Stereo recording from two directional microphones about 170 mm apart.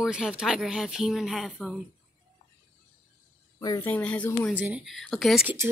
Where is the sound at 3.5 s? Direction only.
20° left (ahead or behind).